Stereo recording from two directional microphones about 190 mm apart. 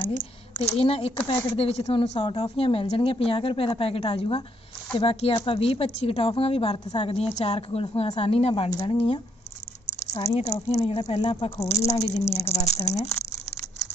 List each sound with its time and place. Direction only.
0.6 s speech: 30° left (ahead or behind)
10.2 s speech: 35° left (ahead or behind)